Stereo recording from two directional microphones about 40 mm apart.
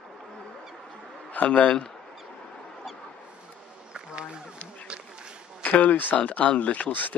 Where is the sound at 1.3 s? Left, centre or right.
Left.